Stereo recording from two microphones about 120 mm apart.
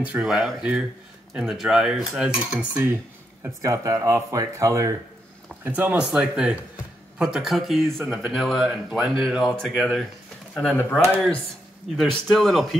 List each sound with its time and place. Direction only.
0.0 s speech: 5° right (ahead or behind)
3.6 s speech: 30° right (ahead or behind)
5.6 s speech: 15° right (ahead or behind); by 11.0 s 5° left (ahead or behind)
12.0 s speech: centre (ahead or behind)